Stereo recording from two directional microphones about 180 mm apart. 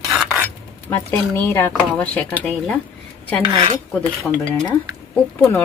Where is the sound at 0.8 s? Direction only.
10° left (ahead or behind).